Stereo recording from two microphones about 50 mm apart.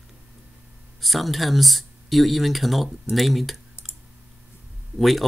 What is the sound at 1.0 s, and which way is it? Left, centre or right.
Speech, centre.